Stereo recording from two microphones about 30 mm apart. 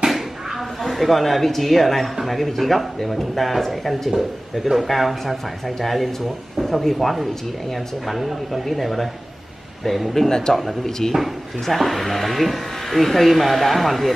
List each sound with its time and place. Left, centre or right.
0.8 s speech: centre
4.1 s speech: centre
4.8 s speech: centre
8.1 s speech: centre
10.2 s speech: centre
10.5 s speech: centre